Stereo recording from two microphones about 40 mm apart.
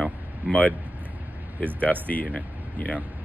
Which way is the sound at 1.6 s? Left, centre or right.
Left.